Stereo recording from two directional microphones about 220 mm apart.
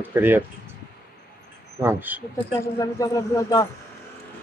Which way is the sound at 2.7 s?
15° left (ahead or behind).